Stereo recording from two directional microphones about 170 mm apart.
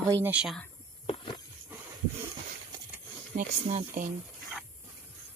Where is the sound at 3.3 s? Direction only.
45° right (ahead or behind).